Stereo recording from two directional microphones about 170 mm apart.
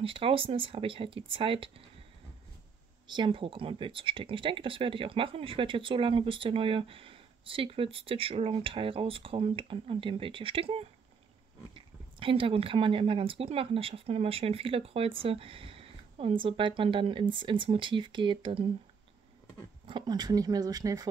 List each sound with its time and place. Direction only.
0.0 s speech: 30° right (ahead or behind)
3.1 s speech: 30° right (ahead or behind)
19.9 s speech: 25° right (ahead or behind)